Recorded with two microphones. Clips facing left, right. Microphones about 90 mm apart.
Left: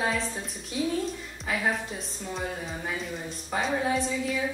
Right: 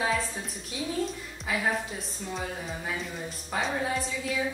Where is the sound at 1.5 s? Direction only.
Centre (ahead or behind).